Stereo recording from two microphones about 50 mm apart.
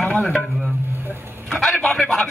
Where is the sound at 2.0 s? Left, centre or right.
Centre.